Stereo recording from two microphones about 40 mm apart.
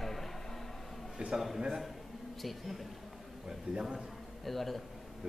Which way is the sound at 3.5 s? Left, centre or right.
Centre.